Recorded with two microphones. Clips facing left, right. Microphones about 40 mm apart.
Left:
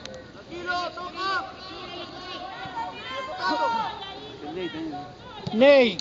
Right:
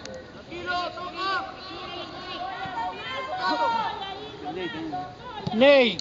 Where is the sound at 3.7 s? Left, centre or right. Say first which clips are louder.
Right 1 dB; centre.